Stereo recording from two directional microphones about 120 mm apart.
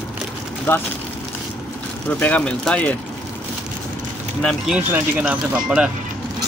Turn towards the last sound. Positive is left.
turn(degrees=-10)  # may be behind; listen again after turning